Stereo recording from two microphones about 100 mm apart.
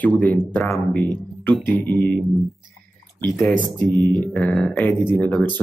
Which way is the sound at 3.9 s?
20° left (ahead or behind).